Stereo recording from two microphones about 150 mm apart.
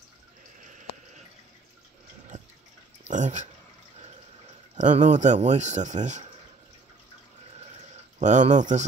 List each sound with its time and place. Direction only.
0.6 s a sound: 60° right (ahead or behind)
3.0 s speech: 50° right (ahead or behind)
4.7 s speech: 55° right (ahead or behind)
8.2 s speech: 55° right (ahead or behind)